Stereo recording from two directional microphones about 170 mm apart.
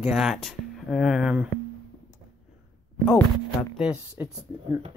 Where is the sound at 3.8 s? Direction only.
5° right (ahead or behind).